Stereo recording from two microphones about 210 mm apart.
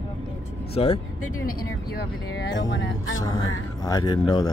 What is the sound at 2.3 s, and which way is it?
Music, 55° left (ahead or behind).